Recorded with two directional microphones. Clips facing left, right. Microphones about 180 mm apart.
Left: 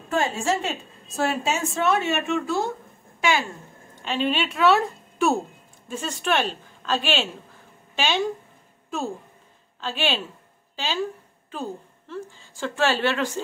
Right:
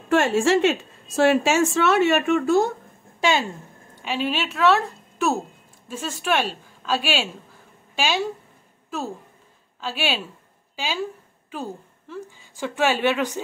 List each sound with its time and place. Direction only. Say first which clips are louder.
0.1 s a woman's voice: right 6 dB; 80° right; by 2.7 s 50° right (ahead or behind)
3.2 s speech: right 2 dB; 25° right (ahead or behind)
3.9 s a woman's voice: left 1 dB; 10° right (ahead or behind)
9.8 s a woman's voice: even; 5° right (ahead or behind)